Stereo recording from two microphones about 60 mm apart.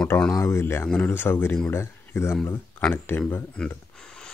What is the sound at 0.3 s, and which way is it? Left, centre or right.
Speech, left.